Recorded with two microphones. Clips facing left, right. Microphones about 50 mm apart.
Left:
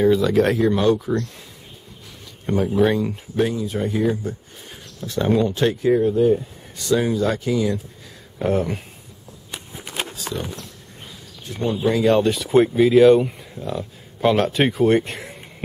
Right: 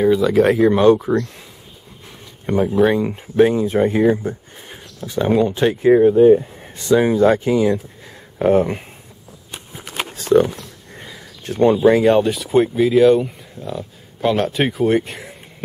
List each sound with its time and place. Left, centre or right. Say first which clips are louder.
0.0 s speech: right 3 dB; centre
0.6 s speech: right 5 dB; right
2.4 s speech: right 3 dB; right
5.8 s speech: right 8 dB; right
10.1 s camera: right 15 dB; right
11.4 s speech: right 10 dB; right
12.0 s speech: right 3 dB; centre